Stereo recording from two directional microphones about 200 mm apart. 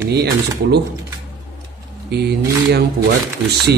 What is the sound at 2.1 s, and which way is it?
Speech, 55° right (ahead or behind).